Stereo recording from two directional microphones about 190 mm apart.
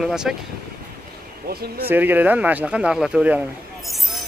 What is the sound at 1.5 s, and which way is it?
Speech, 55° right (ahead or behind).